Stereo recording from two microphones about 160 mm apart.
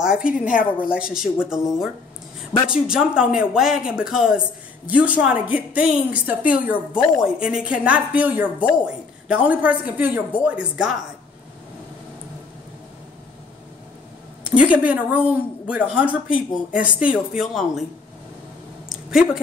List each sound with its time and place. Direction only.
0.0 s a woman's voice: 5° right (ahead or behind)
0.3 s a woman's voice: 55° left (ahead or behind)
0.8 s a woman's voice: 5° right (ahead or behind)
14.5 s a woman's voice: 10° right (ahead or behind)
18.9 s a sound: centre (ahead or behind)